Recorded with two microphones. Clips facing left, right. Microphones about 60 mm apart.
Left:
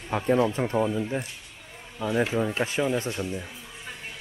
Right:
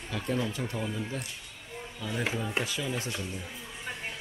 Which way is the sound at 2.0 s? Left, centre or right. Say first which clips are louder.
Left 9 dB; left.